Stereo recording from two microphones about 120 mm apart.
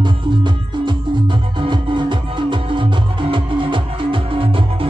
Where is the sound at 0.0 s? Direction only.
40° right (ahead or behind).